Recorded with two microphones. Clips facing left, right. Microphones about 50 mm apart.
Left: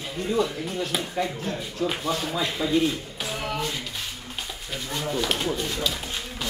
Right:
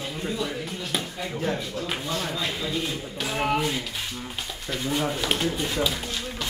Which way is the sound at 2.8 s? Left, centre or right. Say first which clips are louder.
Left 3 dB; centre.